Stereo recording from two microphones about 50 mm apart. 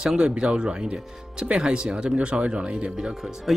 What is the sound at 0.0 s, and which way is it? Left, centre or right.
Speech, centre.